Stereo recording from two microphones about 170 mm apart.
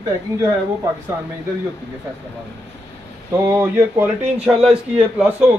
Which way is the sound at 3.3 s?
15° right (ahead or behind).